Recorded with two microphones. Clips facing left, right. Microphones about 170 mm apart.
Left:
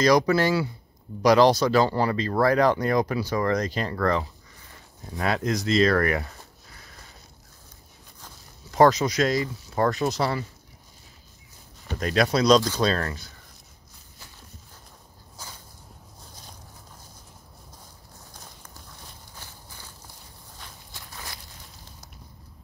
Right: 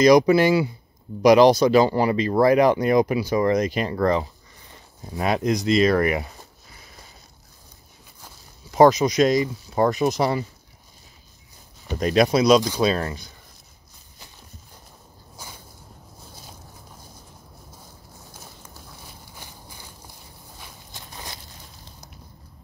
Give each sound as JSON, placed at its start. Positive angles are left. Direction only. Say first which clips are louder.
{"t": 0.0, "sound": "speech", "louder": "right 5 dB", "side_deg": -15}
{"t": 8.7, "sound": "speech", "louder": "right 4 dB", "side_deg": -15}
{"t": 11.9, "sound": "speech", "louder": "right 4 dB", "side_deg": -20}
{"t": 15.4, "sound": "a sound", "louder": "right 1 dB", "side_deg": -10}
{"t": 18.3, "sound": "a sound", "louder": "right 3 dB", "side_deg": -5}
{"t": 20.5, "sound": "walk", "louder": "right 1 dB", "side_deg": -10}